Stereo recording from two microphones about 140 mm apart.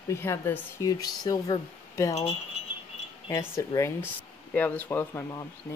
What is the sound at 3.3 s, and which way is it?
Speech, 20° left (ahead or behind).